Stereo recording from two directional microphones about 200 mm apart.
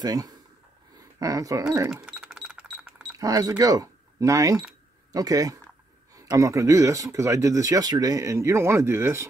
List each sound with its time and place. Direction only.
0.0 s speech: 20° right (ahead or behind)
2.0 s a sound: 5° right (ahead or behind)
3.2 s speech: 15° right (ahead or behind)